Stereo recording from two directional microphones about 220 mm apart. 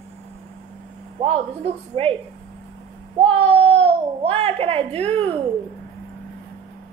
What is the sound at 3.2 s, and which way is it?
A child's voice, 25° right (ahead or behind).